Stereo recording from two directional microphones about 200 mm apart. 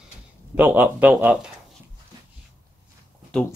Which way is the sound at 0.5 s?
10° right (ahead or behind).